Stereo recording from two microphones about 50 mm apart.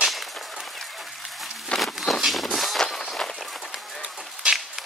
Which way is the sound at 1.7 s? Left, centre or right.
Centre.